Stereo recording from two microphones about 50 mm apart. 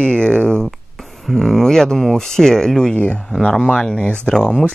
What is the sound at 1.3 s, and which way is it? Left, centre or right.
Speech, centre.